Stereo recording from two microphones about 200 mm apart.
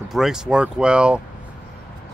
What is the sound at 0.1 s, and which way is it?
Speech, centre (ahead or behind).